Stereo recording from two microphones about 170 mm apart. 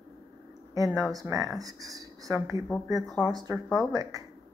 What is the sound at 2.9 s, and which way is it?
Speech, centre (ahead or behind).